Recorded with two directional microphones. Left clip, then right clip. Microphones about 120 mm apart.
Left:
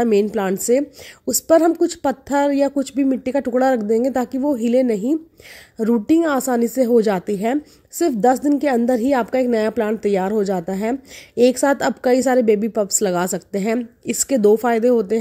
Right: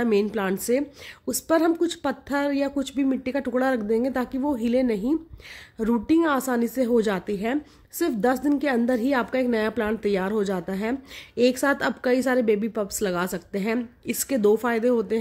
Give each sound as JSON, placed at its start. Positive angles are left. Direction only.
{"t": 0.0, "sound": "a woman's voice", "side_deg": 30}